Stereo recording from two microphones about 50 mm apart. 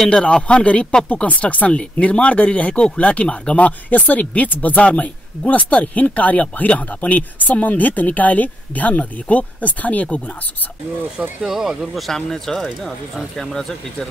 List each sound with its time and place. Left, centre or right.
0.1 s speech: left
11.4 s speech: centre
12.1 s speech: centre